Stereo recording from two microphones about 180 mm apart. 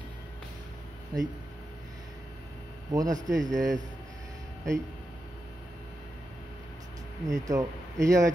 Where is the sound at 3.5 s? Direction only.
20° right (ahead or behind).